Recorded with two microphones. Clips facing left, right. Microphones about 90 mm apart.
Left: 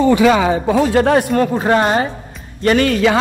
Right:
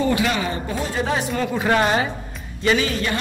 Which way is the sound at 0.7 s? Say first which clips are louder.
Left 13 dB; 75° left (ahead or behind).